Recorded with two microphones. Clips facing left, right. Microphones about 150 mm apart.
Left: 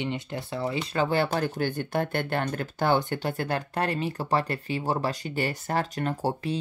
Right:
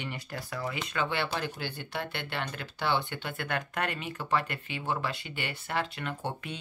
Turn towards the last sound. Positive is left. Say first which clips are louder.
# left 8 dB
turn(degrees=35)  # may be behind; listen again after turning